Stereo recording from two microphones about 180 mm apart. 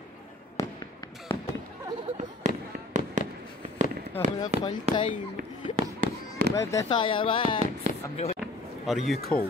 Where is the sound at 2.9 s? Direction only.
40° right (ahead or behind).